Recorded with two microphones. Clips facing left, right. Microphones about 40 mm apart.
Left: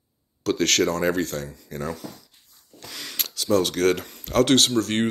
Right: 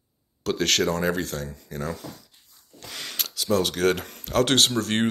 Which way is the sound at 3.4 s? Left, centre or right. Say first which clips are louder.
Left 2 dB; centre.